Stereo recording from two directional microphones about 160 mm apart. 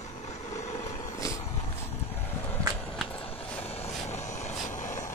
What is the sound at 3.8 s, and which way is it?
Vehicle, 45° left (ahead or behind).